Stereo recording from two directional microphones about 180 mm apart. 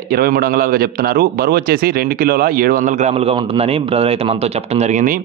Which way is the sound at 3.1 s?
30° right (ahead or behind).